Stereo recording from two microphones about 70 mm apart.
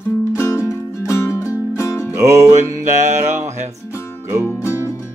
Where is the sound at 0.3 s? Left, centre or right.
Left.